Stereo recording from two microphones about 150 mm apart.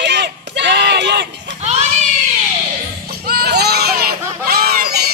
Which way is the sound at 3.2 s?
90° right.